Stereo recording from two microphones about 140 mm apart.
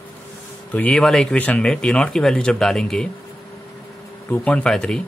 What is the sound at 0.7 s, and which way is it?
Speech, 10° left (ahead or behind).